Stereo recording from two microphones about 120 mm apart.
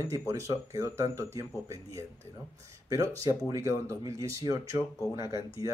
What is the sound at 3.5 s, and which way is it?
Speech, 25° right (ahead or behind).